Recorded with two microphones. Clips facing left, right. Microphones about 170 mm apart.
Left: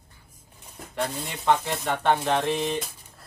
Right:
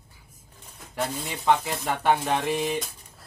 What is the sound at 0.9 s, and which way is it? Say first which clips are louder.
Speech: even; 5° right (ahead or behind).